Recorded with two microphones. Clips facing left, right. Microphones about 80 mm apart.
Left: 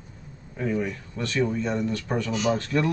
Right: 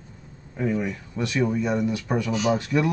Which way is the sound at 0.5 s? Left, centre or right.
Centre.